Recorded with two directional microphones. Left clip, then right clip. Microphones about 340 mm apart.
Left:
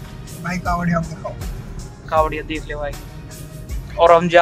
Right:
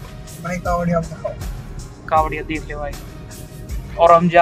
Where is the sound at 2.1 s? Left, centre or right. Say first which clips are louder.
Even; centre.